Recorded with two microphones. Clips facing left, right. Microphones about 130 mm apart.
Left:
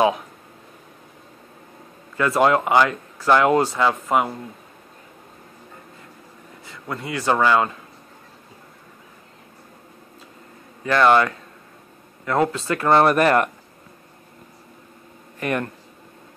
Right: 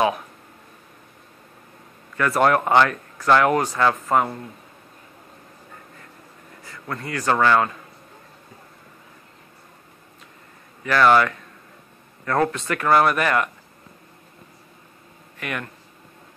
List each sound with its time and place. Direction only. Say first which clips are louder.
2.1 s speech: left 1 dB; 20° left (ahead or behind)
3.8 s speech: even; 10° left (ahead or behind)
6.9 s speech: left 1 dB; 20° left (ahead or behind)
10.8 s speech: even; 25° left (ahead or behind)
15.3 s speech: left 6 dB; 35° left (ahead or behind)